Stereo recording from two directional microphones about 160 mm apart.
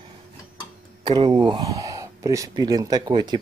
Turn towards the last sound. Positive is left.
turn(degrees=-25)  # may be behind; listen again after turning